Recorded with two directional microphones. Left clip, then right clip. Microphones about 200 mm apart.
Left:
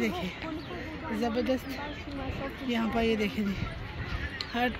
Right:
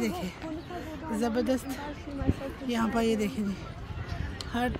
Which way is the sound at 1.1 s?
25° right (ahead or behind).